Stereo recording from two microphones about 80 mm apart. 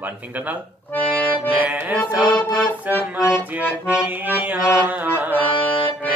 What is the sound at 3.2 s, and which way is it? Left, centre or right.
Accordion, centre.